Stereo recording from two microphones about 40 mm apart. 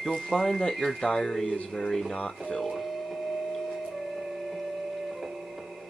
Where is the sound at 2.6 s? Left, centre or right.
Centre.